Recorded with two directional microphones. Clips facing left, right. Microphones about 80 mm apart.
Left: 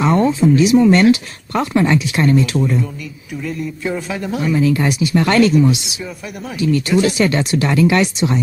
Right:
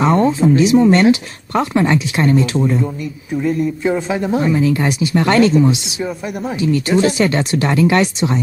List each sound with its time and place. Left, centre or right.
0.0 s speech: right
3.8 s speech: right
6.5 s speech: right